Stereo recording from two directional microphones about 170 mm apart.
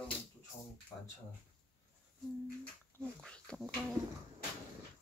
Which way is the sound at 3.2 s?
5° left (ahead or behind).